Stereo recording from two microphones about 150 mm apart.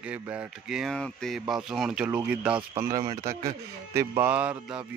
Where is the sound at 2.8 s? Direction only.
20° right (ahead or behind).